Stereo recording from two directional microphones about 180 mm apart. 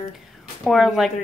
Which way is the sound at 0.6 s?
Centre (ahead or behind).